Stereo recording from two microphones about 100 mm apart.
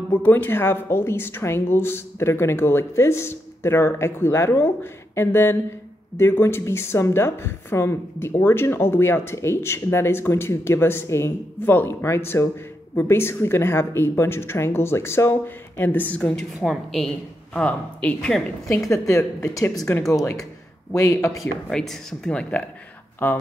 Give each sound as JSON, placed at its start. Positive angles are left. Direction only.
{"t": 0.1, "sound": "speech", "side_deg": 20}
{"t": 16.6, "sound": "a woman's voice", "side_deg": 0}
{"t": 17.6, "sound": "speech", "side_deg": 15}
{"t": 18.9, "sound": "speech", "side_deg": 30}
{"t": 20.9, "sound": "speech", "side_deg": 30}
{"t": 21.3, "sound": "speech", "side_deg": 0}